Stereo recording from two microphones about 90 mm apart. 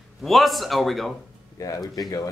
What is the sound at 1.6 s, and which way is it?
Speech, 45° left (ahead or behind).